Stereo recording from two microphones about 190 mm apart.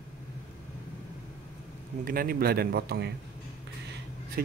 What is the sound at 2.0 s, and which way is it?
Speech, 50° right (ahead or behind).